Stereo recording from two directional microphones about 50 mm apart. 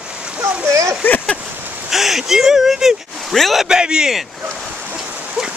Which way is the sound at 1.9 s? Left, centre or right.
Centre.